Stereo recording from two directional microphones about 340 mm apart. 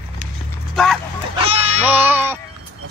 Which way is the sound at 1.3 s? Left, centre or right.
Centre.